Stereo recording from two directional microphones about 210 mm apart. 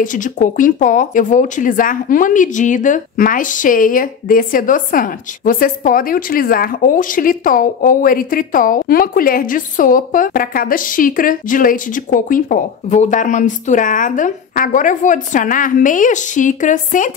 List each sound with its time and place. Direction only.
0.0 s speech: 40° left (ahead or behind)